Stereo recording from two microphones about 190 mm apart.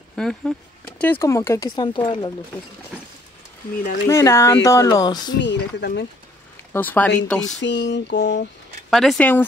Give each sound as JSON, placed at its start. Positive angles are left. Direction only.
{"t": 0.1, "sound": "speech", "side_deg": 5}
{"t": 4.1, "sound": "speech", "side_deg": 15}
{"t": 5.4, "sound": "speech", "side_deg": 65}
{"t": 6.7, "sound": "speech", "side_deg": 10}
{"t": 7.4, "sound": "a sound", "side_deg": 65}
{"t": 8.9, "sound": "speech", "side_deg": 0}